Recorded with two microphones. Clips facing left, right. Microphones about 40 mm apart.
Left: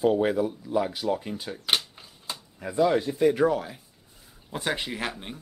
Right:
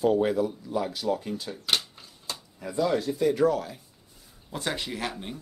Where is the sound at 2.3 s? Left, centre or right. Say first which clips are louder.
Even; centre.